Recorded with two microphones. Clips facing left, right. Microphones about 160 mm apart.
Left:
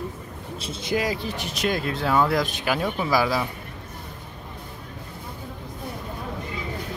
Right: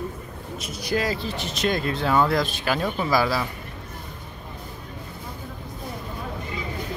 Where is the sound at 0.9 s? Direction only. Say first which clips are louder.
Even; 15° left (ahead or behind).